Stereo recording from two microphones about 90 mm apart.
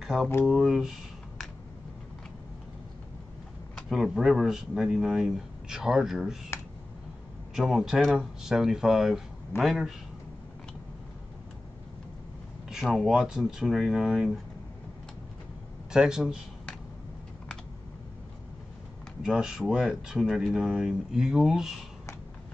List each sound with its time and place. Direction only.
0.0 s speech: 5° right (ahead or behind)
3.7 s speech: centre (ahead or behind)
6.5 s clicking: 30° left (ahead or behind)
7.5 s speech: 5° right (ahead or behind)
12.6 s speech: centre (ahead or behind)
15.9 s speech: 5° right (ahead or behind)
19.2 s speech: 5° right (ahead or behind)